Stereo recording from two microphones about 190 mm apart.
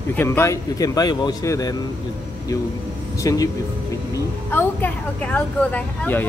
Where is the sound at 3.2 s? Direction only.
20° left (ahead or behind).